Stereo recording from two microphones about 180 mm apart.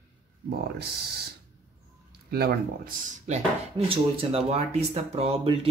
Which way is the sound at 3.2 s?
35° right (ahead or behind).